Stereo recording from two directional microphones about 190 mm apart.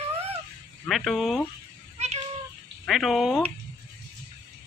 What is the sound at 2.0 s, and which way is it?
Cat, 35° right (ahead or behind).